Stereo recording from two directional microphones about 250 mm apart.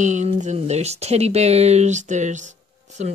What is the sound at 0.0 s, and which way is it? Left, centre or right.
Speech, right.